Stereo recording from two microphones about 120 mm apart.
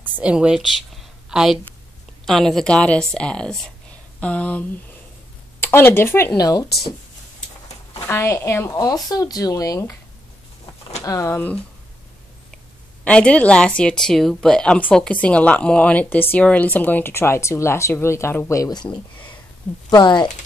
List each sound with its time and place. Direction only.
0.0 s a woman's voice: 10° right (ahead or behind); by 4.6 s 10° left (ahead or behind)
5.7 s speech: 20° left (ahead or behind)
8.1 s speech: 20° left (ahead or behind)
8.7 s speech: 30° left (ahead or behind)
11.0 s speech: 25° left (ahead or behind)
13.0 s speech: 10° left (ahead or behind); by 20.2 s 35° left (ahead or behind)